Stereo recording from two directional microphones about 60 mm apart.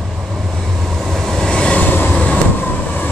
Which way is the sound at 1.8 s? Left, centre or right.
Left.